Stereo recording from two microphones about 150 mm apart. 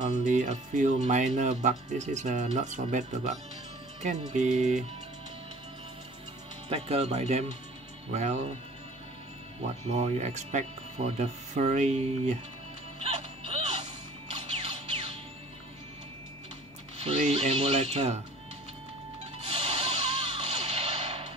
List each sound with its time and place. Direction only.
0.0 s speech: 55° right (ahead or behind)
6.7 s speech: 45° right (ahead or behind)
9.6 s speech: 45° right (ahead or behind)
13.0 s music: 40° right (ahead or behind)
17.0 s speech: 45° right (ahead or behind)
19.4 s a sound: 45° right (ahead or behind)